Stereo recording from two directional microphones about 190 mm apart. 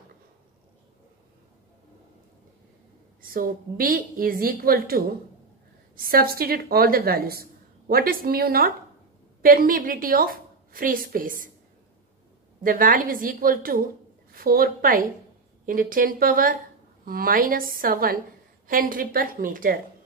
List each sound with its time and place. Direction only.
3.2 s a woman's voice: 50° right (ahead or behind)
12.6 s a woman's voice: 45° right (ahead or behind)